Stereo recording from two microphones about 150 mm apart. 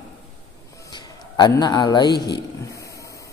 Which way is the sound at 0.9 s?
25° left (ahead or behind).